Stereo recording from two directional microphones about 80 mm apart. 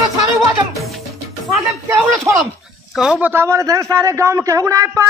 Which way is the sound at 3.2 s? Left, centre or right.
Right.